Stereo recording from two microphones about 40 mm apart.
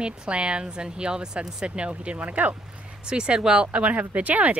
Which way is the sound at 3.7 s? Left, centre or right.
Right.